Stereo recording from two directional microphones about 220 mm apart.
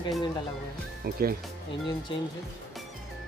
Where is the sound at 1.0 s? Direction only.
40° right (ahead or behind).